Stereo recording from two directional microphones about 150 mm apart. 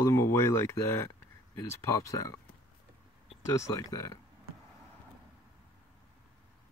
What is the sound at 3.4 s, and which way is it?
Speech, 20° left (ahead or behind).